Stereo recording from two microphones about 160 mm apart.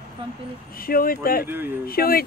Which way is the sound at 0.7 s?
65° left (ahead or behind).